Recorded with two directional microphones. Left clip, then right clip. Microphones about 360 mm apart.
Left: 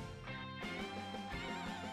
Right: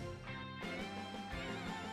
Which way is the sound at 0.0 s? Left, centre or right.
Centre.